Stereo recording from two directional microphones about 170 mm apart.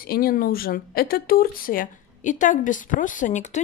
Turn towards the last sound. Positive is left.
turn(degrees=45)  # may be behind; listen again after turning